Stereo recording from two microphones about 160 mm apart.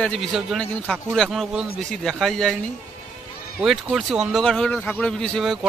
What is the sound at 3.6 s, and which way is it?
A man's voice, centre (ahead or behind).